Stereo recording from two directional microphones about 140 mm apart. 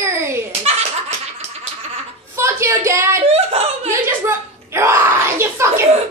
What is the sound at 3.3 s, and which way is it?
Laughter, 50° right (ahead or behind).